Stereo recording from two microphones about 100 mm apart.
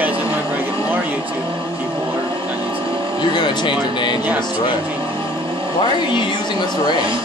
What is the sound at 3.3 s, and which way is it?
Speech, 50° left (ahead or behind).